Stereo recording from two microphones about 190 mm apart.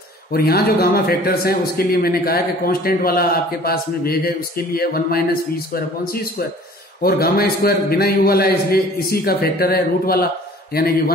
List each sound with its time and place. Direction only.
0.3 s a man's voice: 50° left (ahead or behind)